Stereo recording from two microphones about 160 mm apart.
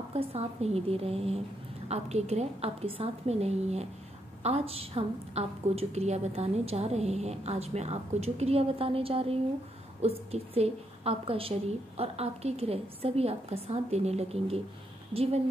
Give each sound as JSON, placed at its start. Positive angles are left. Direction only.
{"t": 0.1, "sound": "a woman's voice", "side_deg": -40}